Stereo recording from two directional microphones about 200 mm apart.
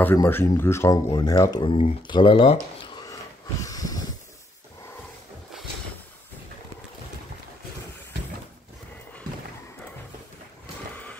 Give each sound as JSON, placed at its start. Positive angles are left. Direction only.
{"t": 0.0, "sound": "speech", "side_deg": 10}
{"t": 3.6, "sound": "snort", "side_deg": 20}